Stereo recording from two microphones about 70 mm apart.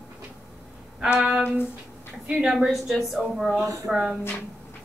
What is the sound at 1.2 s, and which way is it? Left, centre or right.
A woman's voice, centre.